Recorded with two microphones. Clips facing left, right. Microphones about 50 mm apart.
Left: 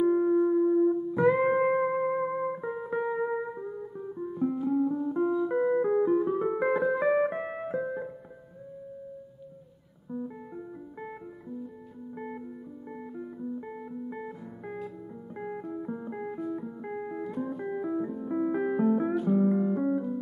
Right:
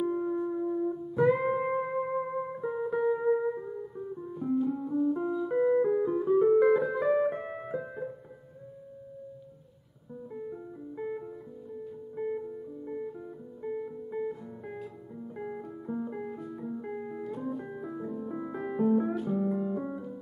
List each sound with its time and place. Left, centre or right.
0.0 s music: centre
3.4 s music: centre
11.0 s music: centre
15.4 s music: centre
19.1 s music: centre
19.6 s music: centre